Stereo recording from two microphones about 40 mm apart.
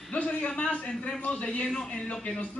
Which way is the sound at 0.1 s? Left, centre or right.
Left.